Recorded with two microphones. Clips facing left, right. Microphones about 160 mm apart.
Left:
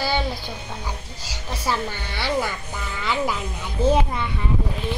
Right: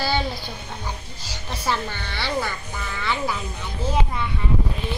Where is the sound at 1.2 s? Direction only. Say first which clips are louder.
Even; 10° left (ahead or behind).